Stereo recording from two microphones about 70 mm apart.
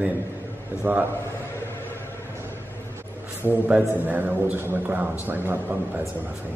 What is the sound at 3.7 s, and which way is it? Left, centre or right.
A man's voice, right.